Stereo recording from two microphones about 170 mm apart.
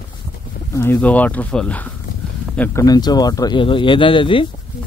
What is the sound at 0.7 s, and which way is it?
Speech, 10° left (ahead or behind).